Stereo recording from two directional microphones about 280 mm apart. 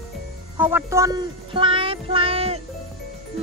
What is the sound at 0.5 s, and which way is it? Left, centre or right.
Speech, centre.